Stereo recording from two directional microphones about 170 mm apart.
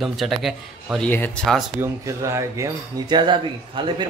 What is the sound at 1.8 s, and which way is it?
Speech, 15° right (ahead or behind).